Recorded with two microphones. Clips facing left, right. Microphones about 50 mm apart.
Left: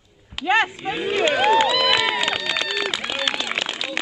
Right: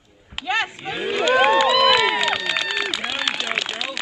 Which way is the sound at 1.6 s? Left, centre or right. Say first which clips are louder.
Right 4 dB; centre.